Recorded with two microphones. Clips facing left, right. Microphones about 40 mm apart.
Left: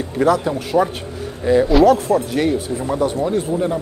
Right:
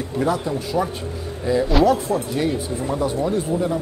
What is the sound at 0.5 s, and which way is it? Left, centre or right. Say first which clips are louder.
A man's voice: left 5 dB; left.